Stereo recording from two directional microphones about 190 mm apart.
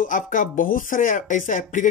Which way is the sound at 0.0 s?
45° left (ahead or behind).